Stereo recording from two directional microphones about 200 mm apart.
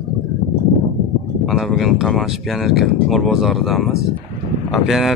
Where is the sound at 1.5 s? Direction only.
Centre (ahead or behind).